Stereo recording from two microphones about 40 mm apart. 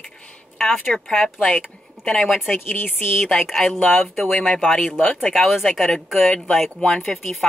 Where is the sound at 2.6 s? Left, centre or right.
Left.